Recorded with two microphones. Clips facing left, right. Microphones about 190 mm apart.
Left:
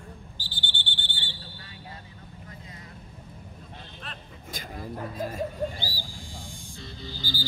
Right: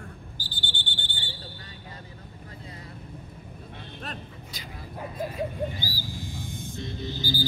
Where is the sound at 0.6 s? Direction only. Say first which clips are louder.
Even; 45° right (ahead or behind).